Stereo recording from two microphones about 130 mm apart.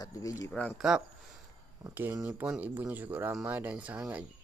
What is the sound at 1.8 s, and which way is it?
Speech, 20° right (ahead or behind).